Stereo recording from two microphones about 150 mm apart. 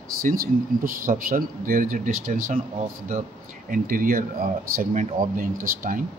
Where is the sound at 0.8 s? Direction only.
65° right (ahead or behind).